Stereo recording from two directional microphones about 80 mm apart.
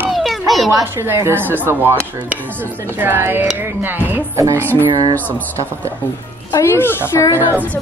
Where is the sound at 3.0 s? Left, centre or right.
Right.